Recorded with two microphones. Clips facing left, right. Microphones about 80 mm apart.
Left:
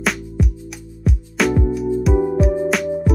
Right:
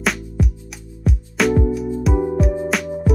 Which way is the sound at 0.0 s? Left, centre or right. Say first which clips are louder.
Even; centre.